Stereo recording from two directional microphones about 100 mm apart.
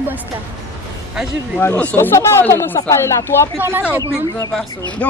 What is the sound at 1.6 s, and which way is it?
Speech, 20° left (ahead or behind).